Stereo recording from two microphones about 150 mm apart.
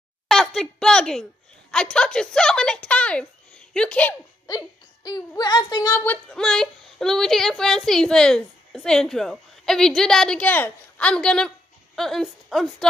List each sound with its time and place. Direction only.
0.3 s a sound: 5° left (ahead or behind)
1.7 s a woman's voice: 5° left (ahead or behind)
4.5 s speech: 25° left (ahead or behind)
6.3 s a woman's voice: 5° left (ahead or behind)